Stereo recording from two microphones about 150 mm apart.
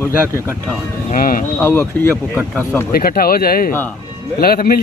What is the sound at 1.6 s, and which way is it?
Speech, 15° left (ahead or behind).